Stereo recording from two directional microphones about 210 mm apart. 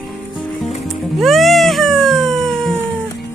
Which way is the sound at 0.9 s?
Centre (ahead or behind).